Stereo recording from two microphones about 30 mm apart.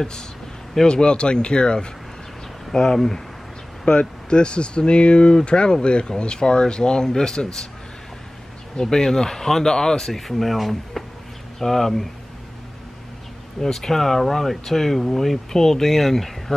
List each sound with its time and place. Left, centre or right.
0.8 s speech: left
2.7 s speech: centre
3.9 s speech: left
8.7 s speech: centre
10.2 s speech: centre
13.6 s speech: centre